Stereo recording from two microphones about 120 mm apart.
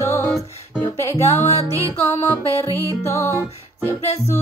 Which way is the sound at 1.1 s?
60° left (ahead or behind).